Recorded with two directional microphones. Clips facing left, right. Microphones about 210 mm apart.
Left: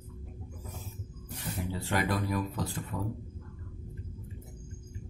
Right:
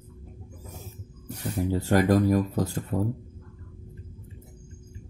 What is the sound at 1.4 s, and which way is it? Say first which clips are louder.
Speech: right 9 dB; 40° right (ahead or behind).